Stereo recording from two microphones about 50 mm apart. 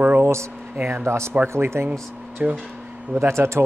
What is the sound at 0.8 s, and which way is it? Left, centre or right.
A man's voice, right.